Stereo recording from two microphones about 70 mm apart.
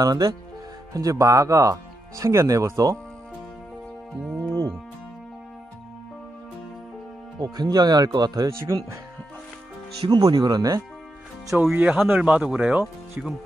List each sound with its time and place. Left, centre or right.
0.0 s speech: right
0.9 s speech: right
4.4 s speech: right
7.3 s speech: right
8.5 s speech: right
10.1 s speech: right
11.7 s speech: right